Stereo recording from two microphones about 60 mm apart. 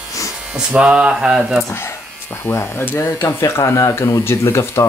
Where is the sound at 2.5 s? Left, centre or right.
Left.